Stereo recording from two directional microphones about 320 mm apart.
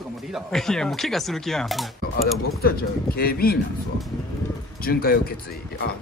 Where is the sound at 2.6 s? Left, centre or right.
Left.